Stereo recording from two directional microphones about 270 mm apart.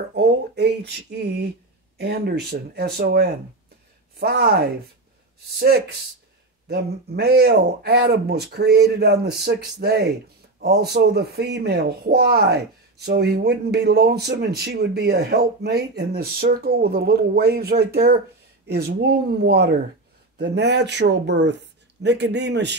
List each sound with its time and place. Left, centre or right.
0.1 s speech: right
6.7 s speech: right